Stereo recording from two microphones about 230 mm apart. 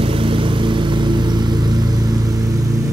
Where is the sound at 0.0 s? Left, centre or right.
Right.